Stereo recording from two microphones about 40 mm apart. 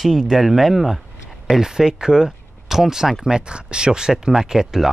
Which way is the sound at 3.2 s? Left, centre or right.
Right.